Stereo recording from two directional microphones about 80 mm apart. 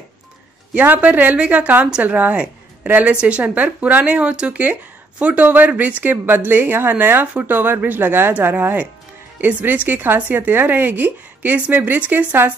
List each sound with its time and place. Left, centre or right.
0.7 s a woman's voice: centre